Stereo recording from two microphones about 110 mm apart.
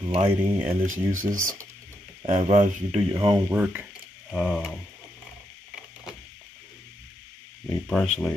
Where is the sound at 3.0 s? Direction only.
45° right (ahead or behind).